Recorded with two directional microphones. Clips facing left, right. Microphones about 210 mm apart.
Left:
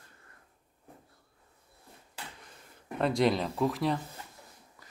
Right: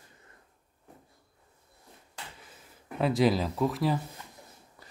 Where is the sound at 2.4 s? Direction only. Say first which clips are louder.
Even; 5° right (ahead or behind).